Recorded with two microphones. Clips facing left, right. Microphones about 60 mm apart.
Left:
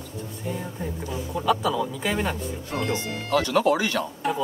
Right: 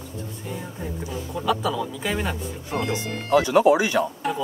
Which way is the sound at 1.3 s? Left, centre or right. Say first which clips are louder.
Left 1 dB; centre.